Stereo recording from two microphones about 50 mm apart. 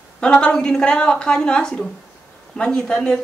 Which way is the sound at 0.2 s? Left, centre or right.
Centre.